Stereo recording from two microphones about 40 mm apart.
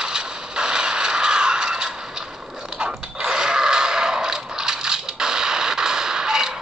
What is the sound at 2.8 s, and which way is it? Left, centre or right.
Neigh, centre.